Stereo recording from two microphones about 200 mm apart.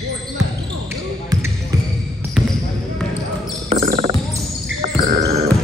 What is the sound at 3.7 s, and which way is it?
Basketball bounce, 35° right (ahead or behind).